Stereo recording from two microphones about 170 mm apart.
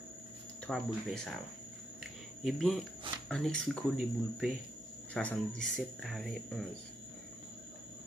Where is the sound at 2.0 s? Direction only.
Centre (ahead or behind).